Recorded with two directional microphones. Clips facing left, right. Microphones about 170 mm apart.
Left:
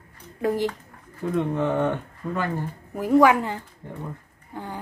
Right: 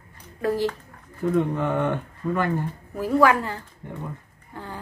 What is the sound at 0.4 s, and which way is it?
A woman's voice, 15° left (ahead or behind).